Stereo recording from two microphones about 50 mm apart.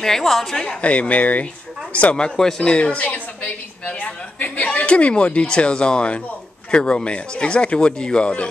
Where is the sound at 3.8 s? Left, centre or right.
Left.